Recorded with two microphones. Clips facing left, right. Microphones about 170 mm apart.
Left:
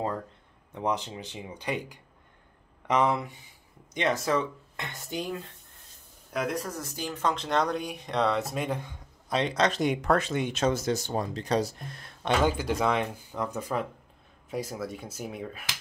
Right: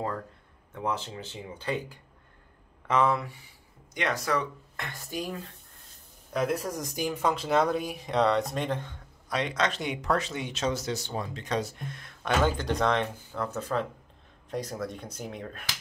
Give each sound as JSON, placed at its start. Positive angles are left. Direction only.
{"t": 0.7, "sound": "speech", "side_deg": 15}
{"t": 6.3, "sound": "speech", "side_deg": -5}
{"t": 9.3, "sound": "speech", "side_deg": 30}
{"t": 12.2, "sound": "speech", "side_deg": 15}